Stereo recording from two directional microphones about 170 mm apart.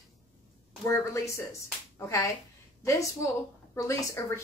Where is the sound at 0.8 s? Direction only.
15° left (ahead or behind).